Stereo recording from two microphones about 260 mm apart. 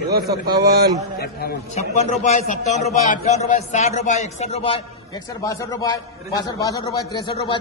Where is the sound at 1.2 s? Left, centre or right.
Left.